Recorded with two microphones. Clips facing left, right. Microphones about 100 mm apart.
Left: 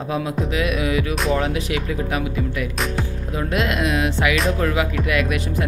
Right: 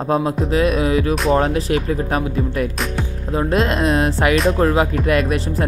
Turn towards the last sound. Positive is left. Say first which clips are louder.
# right 3 dB
turn(degrees=-35)  # may be behind; listen again after turning